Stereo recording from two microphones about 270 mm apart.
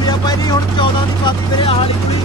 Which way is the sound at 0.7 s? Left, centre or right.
Centre.